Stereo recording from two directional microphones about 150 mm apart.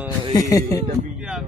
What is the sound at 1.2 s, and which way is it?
Music, 5° right (ahead or behind).